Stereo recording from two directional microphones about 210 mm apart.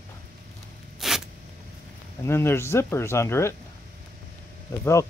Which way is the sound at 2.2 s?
10° left (ahead or behind).